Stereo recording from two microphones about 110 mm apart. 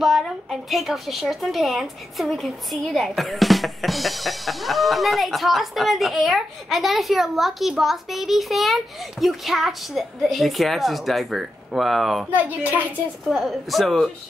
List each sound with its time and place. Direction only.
0.0 s speech: centre (ahead or behind)
12.4 s a child's voice: 15° right (ahead or behind)
13.3 s speech: centre (ahead or behind)